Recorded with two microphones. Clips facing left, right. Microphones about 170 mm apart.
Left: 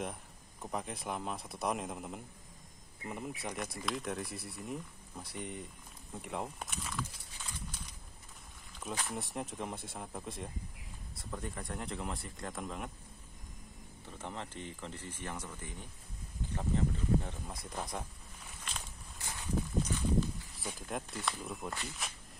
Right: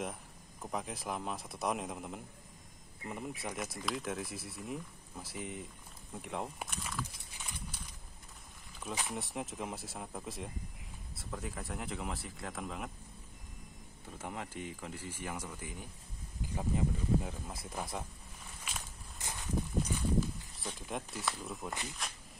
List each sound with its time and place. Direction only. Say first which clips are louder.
0.0 s speech: even; centre (ahead or behind)
8.7 s a sound: even; centre (ahead or behind)
9.1 s speech: even; centre (ahead or behind)
14.1 s speech: right 1 dB; 10° right (ahead or behind)
19.1 s a sound: right 1 dB; 20° right (ahead or behind)
20.5 s speech: left 1 dB; centre (ahead or behind)